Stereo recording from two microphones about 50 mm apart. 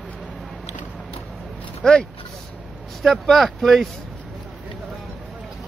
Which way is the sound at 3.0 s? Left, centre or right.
Centre.